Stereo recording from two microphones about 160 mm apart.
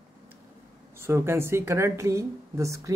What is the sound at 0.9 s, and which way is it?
A woman's voice, 15° right (ahead or behind).